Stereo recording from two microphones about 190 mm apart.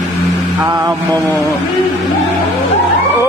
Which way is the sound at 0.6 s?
20° right (ahead or behind).